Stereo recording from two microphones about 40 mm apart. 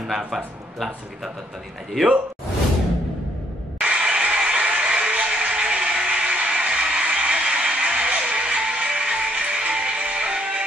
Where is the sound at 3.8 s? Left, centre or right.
Right.